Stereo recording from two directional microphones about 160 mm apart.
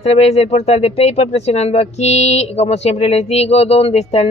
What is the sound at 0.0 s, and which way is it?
A woman's voice, 40° left (ahead or behind).